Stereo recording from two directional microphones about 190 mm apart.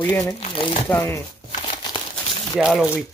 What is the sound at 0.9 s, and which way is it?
Speech, 10° left (ahead or behind).